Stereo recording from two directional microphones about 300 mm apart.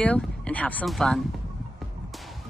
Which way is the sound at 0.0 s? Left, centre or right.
Centre.